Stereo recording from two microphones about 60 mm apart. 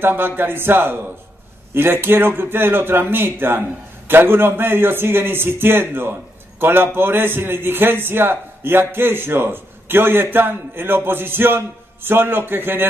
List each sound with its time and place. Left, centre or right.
0.0 s a man's voice: right